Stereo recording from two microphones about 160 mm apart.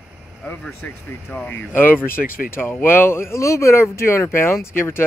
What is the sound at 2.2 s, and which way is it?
Speech, 60° left (ahead or behind).